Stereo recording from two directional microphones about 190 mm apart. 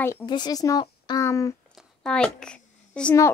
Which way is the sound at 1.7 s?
5° left (ahead or behind).